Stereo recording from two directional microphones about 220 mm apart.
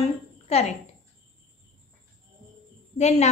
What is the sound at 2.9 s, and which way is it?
Speech, 30° left (ahead or behind).